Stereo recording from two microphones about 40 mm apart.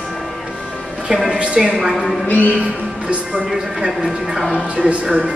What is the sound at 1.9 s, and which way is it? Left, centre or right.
Speech, centre.